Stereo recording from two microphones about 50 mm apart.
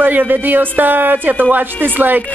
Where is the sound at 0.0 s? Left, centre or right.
Right.